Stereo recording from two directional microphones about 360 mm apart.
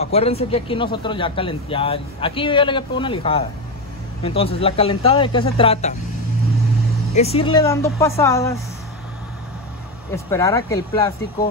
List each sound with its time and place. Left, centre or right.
0.0 s speech: centre
7.2 s speech: centre
10.1 s speech: centre